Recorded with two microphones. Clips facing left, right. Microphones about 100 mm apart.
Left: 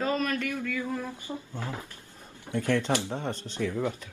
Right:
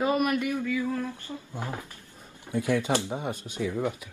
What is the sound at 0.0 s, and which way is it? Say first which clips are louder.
Speech: right 3 dB; 15° right (ahead or behind).